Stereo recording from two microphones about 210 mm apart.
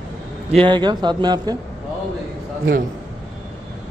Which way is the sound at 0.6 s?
20° right (ahead or behind).